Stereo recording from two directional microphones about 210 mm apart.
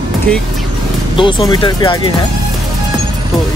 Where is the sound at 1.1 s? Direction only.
25° left (ahead or behind).